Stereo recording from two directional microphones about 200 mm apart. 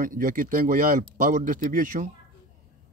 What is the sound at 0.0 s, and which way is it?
Speech, 45° right (ahead or behind).